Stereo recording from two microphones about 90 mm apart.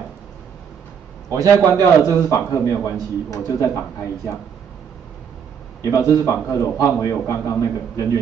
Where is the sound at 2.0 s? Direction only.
30° left (ahead or behind).